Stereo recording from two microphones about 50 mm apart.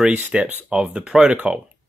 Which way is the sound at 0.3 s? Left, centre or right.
Centre.